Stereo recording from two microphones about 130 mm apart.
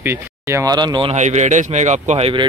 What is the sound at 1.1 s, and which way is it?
A man's voice, 65° right (ahead or behind).